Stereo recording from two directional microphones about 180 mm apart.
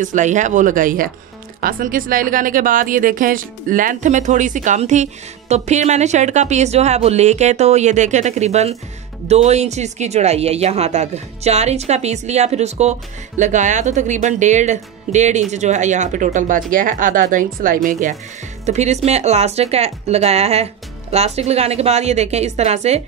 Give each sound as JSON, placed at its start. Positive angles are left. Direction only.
{"t": 0.0, "sound": "speech", "side_deg": -45}